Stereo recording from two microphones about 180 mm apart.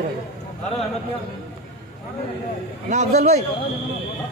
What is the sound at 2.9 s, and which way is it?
Speech, 40° right (ahead or behind).